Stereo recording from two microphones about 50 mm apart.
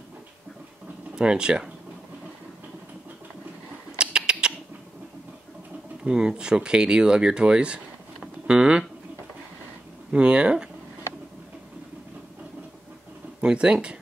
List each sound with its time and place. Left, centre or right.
1.1 s speech: centre
4.0 s rodents: centre
6.0 s speech: centre
10.1 s speech: right
13.4 s speech: centre